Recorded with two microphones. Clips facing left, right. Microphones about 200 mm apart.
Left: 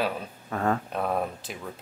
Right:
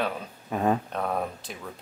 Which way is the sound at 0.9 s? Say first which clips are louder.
Left 1 dB; 5° left (ahead or behind).